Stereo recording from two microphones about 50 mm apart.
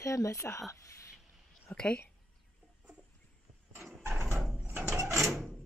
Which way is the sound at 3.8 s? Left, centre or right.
Right.